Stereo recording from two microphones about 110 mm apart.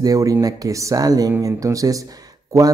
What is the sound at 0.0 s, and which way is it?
Mantra, 35° right (ahead or behind).